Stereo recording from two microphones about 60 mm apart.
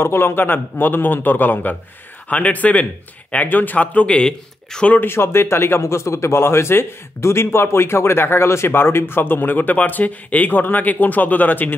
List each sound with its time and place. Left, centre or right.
0.0 s a man's voice: left; by 4.9 s centre
5.0 s speech: left